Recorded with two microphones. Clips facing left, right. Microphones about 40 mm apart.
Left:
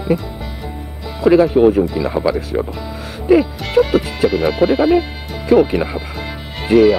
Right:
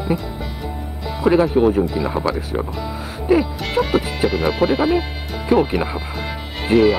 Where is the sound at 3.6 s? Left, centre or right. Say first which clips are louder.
Left 5 dB; centre.